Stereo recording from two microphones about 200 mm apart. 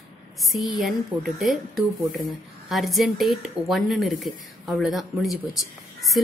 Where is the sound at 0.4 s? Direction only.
Centre (ahead or behind).